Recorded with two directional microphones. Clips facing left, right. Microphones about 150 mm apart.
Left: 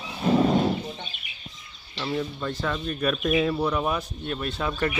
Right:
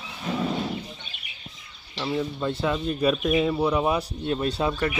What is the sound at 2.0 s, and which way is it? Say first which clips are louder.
Speech: right 2 dB; 15° right (ahead or behind).